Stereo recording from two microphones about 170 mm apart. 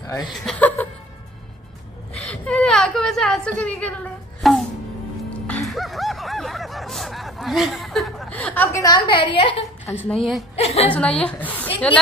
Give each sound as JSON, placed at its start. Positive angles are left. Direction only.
{"t": 0.0, "sound": "speech", "side_deg": 20}
{"t": 0.3, "sound": "speech", "side_deg": 5}
{"t": 2.2, "sound": "whimper", "side_deg": 5}
{"t": 5.7, "sound": "snicker", "side_deg": 0}
{"t": 8.7, "sound": "a woman's voice", "side_deg": 20}
{"t": 10.0, "sound": "a woman's voice", "side_deg": 0}
{"t": 10.5, "sound": "a woman's voice", "side_deg": 35}
{"t": 10.9, "sound": "a woman's voice", "side_deg": 5}